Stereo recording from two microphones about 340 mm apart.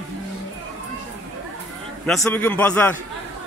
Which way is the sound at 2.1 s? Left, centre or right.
Centre.